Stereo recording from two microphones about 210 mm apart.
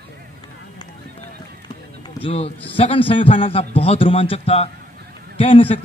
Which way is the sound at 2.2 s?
25° left (ahead or behind).